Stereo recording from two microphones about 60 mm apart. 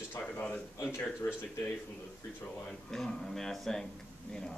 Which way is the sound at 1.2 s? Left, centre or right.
Left.